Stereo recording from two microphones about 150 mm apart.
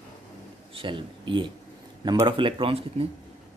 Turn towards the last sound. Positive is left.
turn(degrees=-40)  # may be behind; listen again after turning